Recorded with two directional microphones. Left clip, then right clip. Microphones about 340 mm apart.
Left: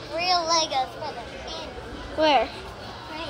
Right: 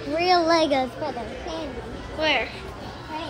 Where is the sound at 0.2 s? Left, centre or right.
Right.